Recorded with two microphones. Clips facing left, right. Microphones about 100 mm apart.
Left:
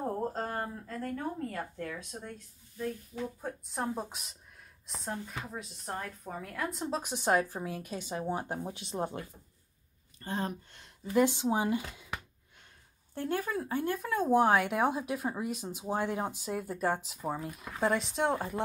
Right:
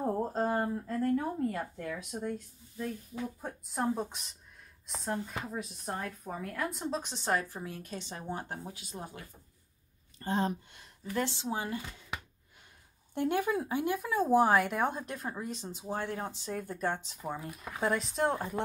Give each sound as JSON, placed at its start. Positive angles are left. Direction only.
{"t": 0.3, "sound": "a sound", "side_deg": -15}
{"t": 3.7, "sound": "a woman's voice", "side_deg": 0}
{"t": 10.1, "sound": "speech", "side_deg": -30}
{"t": 11.1, "sound": "a woman's voice", "side_deg": 15}
{"t": 13.1, "sound": "speech", "side_deg": -20}